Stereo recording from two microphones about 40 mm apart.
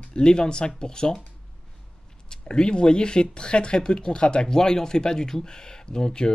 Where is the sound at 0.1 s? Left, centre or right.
Left.